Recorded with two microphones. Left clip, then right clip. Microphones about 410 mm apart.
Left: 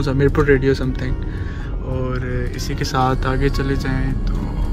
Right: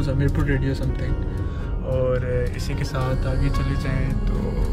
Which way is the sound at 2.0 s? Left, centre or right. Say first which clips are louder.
Right 3 dB; centre.